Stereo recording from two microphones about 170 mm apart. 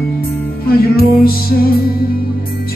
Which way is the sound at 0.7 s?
65° left (ahead or behind).